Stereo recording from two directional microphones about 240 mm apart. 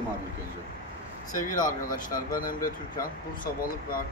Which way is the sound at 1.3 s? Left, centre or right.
Left.